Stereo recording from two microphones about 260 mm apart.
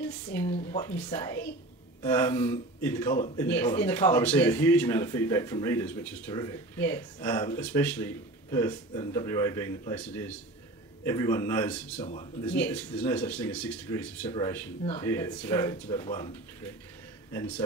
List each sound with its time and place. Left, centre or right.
0.3 s speech: centre
12.0 s speech: left
12.4 s speech: centre